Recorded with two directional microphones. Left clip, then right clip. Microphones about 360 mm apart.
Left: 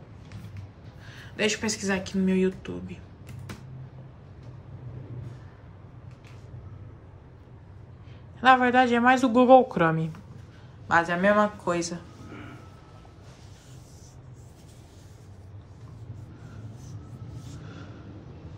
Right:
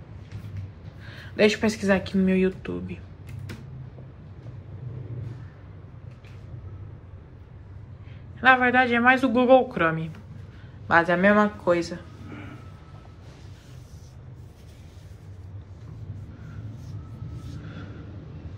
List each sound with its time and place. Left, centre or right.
1.3 s speech: centre
8.4 s speech: centre